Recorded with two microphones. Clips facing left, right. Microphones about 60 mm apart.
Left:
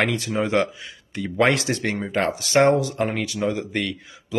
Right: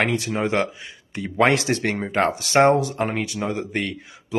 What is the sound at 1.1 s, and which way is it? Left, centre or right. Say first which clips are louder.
Speech: right 1 dB; right.